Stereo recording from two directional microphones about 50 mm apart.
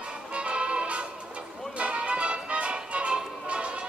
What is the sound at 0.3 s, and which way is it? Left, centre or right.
Music, right.